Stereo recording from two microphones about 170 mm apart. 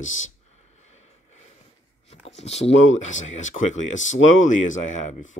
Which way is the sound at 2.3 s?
40° left (ahead or behind).